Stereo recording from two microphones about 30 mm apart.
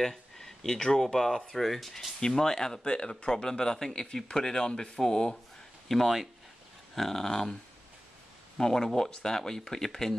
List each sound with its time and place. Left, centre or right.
0.7 s speech: left; by 2.1 s centre
2.1 s speech: left
2.9 s speech: left
3.3 s speech: left
4.6 s speech: left
5.0 s speech: centre
5.9 s speech: centre
8.6 s speech: left